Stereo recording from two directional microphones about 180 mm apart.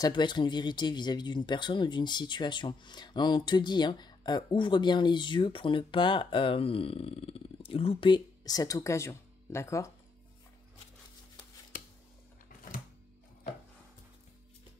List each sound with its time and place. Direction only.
0.0 s speech: 25° left (ahead or behind)